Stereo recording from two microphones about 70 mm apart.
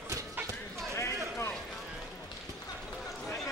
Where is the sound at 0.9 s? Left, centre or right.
Left.